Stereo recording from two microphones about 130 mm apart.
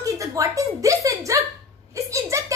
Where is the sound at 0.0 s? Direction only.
25° right (ahead or behind).